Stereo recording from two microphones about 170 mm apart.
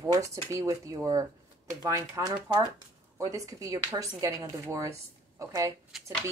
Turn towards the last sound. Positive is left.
turn(degrees=0)  # may be behind; listen again after turning